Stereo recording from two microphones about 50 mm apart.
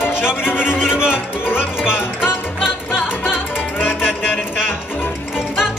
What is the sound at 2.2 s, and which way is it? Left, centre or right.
Music, centre.